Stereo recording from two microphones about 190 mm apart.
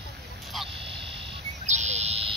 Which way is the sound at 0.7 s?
30° right (ahead or behind).